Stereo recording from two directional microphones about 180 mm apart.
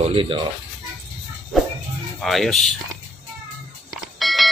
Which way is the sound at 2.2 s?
Centre (ahead or behind).